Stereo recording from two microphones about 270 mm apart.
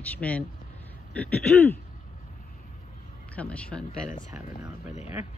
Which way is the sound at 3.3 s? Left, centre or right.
Centre.